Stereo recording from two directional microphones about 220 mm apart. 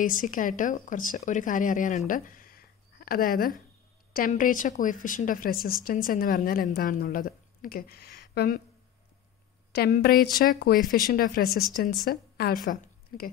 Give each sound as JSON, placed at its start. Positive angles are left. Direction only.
{"t": 0.0, "sound": "speech", "side_deg": 35}
{"t": 9.7, "sound": "a woman's voice", "side_deg": 40}